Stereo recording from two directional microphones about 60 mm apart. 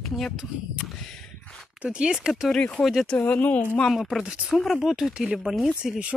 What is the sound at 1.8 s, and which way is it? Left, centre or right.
Speech, centre.